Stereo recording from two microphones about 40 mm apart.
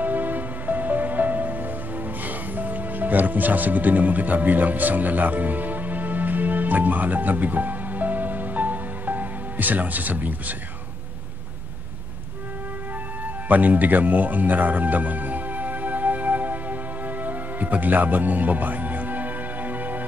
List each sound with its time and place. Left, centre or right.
0.0 s music: right
13.5 s music: right